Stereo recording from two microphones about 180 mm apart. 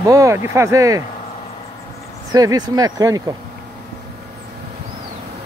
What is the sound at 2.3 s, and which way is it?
Speech, 20° right (ahead or behind).